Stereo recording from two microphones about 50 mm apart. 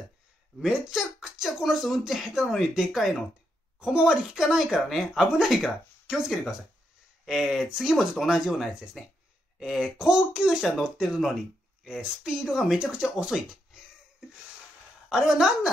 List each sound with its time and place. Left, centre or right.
0.6 s speech: centre
9.9 s speech: centre
13.3 s speech: centre
13.7 s a sound: centre
15.0 s speech: centre